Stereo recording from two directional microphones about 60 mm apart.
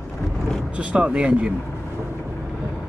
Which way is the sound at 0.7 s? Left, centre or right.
Centre.